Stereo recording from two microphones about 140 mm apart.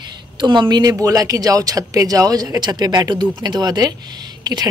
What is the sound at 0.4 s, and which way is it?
Speech, 30° right (ahead or behind).